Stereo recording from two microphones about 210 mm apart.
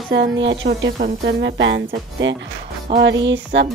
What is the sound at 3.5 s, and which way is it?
Speech, 55° right (ahead or behind).